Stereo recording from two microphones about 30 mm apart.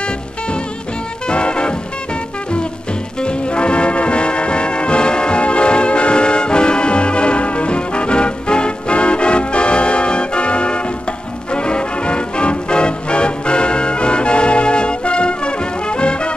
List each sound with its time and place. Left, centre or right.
1.3 s music: left
3.2 s brass instrument: left
11.5 s music: left